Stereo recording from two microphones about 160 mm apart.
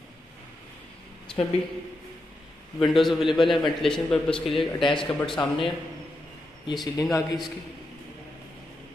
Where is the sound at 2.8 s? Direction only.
Centre (ahead or behind).